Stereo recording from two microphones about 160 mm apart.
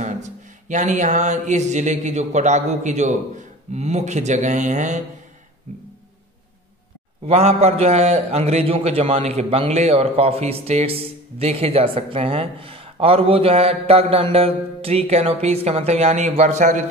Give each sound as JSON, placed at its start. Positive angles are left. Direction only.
{"t": 0.0, "sound": "mantra", "side_deg": -50}
{"t": 7.2, "sound": "a man's voice", "side_deg": -40}